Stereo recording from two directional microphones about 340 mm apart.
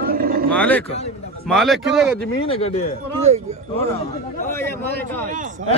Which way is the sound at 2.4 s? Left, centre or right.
Centre.